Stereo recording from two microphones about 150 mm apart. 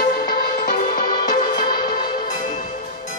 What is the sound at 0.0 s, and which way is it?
Music, 75° left (ahead or behind).